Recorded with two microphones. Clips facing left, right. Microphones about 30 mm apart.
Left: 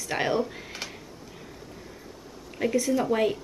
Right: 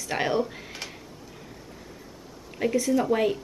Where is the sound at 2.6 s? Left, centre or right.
Centre.